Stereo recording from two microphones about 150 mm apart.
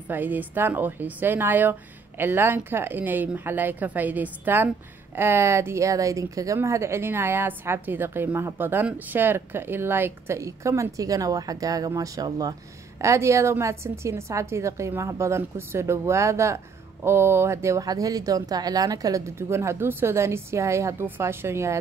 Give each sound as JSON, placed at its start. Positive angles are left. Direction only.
{"t": 0.1, "sound": "speech", "side_deg": -10}